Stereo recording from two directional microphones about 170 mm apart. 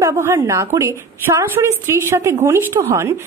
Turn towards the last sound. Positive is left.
turn(degrees=-15)  # may be behind; listen again after turning